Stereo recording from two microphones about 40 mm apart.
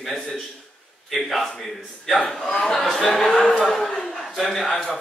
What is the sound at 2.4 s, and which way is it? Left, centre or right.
Speech, centre.